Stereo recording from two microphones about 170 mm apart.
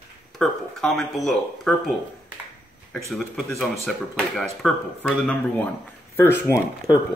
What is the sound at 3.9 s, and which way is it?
Speech, centre (ahead or behind).